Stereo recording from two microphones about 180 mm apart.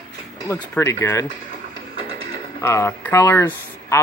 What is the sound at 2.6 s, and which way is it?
Speech, 15° left (ahead or behind).